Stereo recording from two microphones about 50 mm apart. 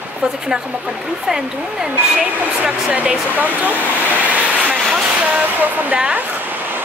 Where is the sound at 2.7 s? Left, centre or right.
Right.